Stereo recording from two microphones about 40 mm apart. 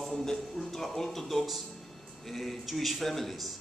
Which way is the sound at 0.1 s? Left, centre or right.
Centre.